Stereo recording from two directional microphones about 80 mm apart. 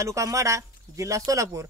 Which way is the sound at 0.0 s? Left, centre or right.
Right.